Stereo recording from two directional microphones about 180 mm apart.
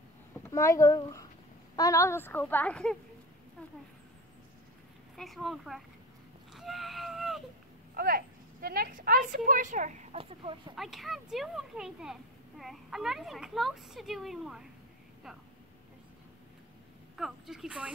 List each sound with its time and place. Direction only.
0.3 s a child's voice: 15° left (ahead or behind)
5.1 s a child's voice: centre (ahead or behind)
6.5 s baby cry: centre (ahead or behind)
7.9 s speech: 55° right (ahead or behind)
10.1 s speech: 30° right (ahead or behind)
10.8 s a child's voice: centre (ahead or behind)
17.2 s a child's voice: centre (ahead or behind)